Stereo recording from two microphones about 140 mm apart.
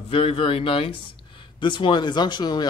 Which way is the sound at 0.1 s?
40° left (ahead or behind).